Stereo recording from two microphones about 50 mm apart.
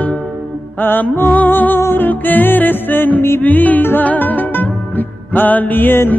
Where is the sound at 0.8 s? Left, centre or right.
Left.